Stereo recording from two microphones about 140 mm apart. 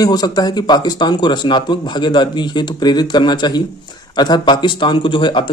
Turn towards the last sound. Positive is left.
turn(degrees=35)  # may be behind; listen again after turning